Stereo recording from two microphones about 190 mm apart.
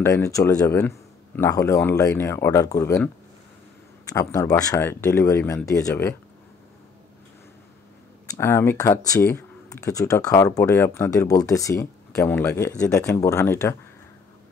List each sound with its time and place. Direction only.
0.0 s speech: 15° left (ahead or behind)
4.1 s speech: 20° left (ahead or behind)
8.3 s speech: 15° left (ahead or behind)